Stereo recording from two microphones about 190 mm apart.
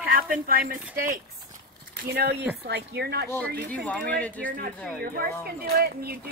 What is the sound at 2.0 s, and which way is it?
Speech, 60° right (ahead or behind).